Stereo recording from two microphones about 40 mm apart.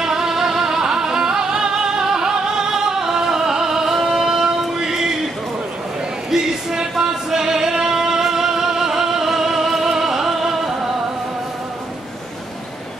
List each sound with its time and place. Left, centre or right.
0.0 s music: centre
6.3 s music: centre